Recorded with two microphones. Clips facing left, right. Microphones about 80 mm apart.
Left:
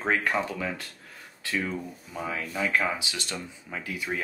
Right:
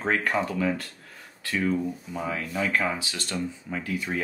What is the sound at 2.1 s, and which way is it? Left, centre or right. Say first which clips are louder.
Speech: right 2 dB; centre.